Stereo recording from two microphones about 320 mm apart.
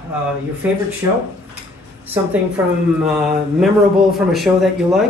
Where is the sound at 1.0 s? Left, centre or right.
Centre.